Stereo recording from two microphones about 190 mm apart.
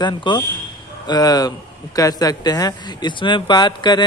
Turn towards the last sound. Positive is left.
turn(degrees=25)  # may be behind; listen again after turning